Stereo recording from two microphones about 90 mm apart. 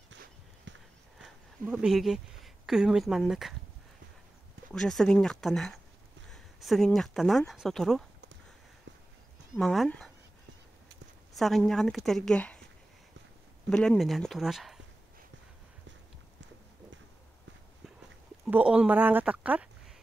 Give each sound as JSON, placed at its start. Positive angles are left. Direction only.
{"t": 1.2, "sound": "speech", "side_deg": -5}
{"t": 4.7, "sound": "a woman's voice", "side_deg": 5}
{"t": 9.6, "sound": "a woman's voice", "side_deg": 5}
{"t": 11.3, "sound": "a woman's voice", "side_deg": 0}
{"t": 13.7, "sound": "a woman's voice", "side_deg": 10}
{"t": 18.5, "sound": "speech", "side_deg": -10}